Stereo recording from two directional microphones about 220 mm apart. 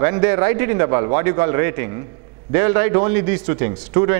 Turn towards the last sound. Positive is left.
turn(degrees=-15)  # may be behind; listen again after turning